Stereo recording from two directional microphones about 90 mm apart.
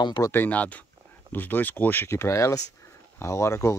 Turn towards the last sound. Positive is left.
turn(degrees=30)  # may be behind; listen again after turning